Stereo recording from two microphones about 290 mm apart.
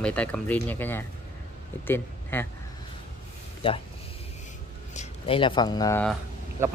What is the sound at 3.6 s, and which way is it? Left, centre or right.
Speech, centre.